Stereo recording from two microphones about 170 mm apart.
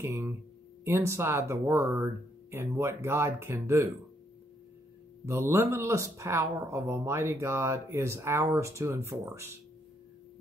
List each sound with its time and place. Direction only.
0.0 s a sound: 15° right (ahead or behind)
0.8 s speech: 15° right (ahead or behind)
5.2 s speech: 15° right (ahead or behind)